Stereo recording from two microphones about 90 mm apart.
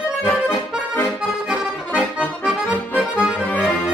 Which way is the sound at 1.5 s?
15° right (ahead or behind).